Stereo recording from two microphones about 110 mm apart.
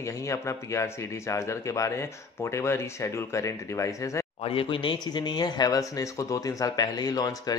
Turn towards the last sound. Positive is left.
turn(degrees=35)  # may be behind; listen again after turning